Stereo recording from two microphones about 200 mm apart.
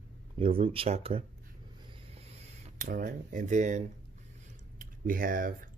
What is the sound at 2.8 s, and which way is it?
Speech, 40° right (ahead or behind).